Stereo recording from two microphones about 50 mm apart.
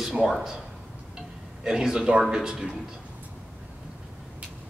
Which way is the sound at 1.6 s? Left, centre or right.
Centre.